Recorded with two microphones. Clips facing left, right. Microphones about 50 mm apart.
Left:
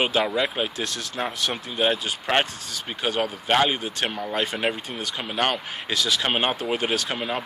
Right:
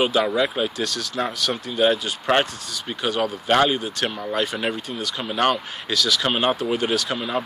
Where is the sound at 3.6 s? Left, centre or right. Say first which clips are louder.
Right 2 dB; left.